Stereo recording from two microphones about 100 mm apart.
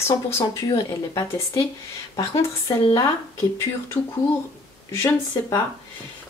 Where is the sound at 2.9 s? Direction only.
35° left (ahead or behind).